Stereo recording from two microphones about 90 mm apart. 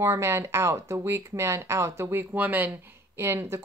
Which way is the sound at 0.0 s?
30° right (ahead or behind).